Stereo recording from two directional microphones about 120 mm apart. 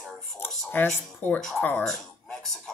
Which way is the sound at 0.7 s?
15° left (ahead or behind).